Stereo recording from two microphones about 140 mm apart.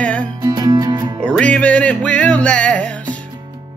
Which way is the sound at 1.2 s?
10° left (ahead or behind).